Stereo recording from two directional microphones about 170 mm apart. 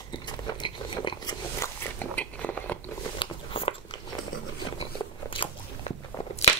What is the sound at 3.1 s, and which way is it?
Biting, 30° left (ahead or behind).